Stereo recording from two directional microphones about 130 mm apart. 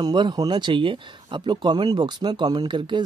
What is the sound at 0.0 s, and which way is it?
Speech, 35° right (ahead or behind).